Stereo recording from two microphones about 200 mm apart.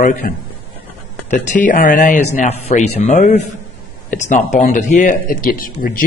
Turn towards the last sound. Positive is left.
turn(degrees=45)  # may be behind; listen again after turning